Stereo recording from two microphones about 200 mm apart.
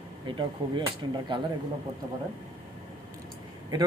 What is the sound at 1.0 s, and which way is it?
Speech, 25° right (ahead or behind).